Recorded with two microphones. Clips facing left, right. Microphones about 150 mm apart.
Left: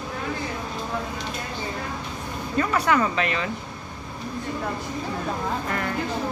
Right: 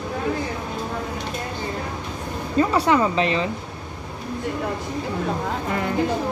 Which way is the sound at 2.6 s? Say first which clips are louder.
Right 4 dB; 25° right (ahead or behind).